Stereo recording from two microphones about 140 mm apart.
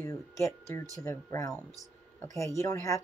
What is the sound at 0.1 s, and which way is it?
Speech, 20° left (ahead or behind).